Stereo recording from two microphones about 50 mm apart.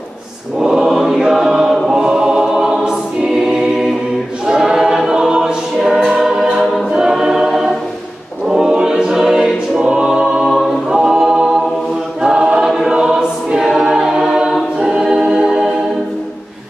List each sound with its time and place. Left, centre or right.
0.6 s chant: centre
4.5 s choir: centre
10.9 s music: centre
12.2 s choir: centre